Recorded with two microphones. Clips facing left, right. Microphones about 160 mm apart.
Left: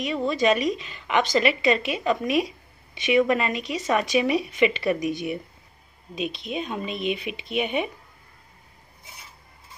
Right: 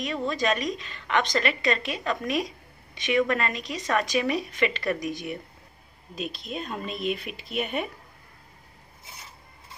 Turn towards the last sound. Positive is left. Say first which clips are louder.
# left 4 dB
turn(degrees=0)  # may be behind; listen again after turning